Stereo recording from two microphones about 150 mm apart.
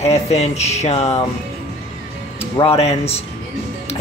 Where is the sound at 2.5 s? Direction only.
40° left (ahead or behind).